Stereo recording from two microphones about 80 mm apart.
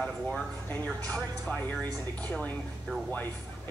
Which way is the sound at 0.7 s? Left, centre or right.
Left.